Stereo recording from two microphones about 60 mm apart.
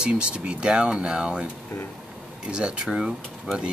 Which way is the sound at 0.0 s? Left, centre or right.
Centre.